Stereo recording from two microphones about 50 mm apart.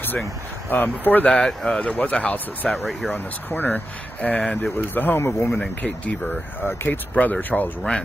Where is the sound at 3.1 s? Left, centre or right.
Left.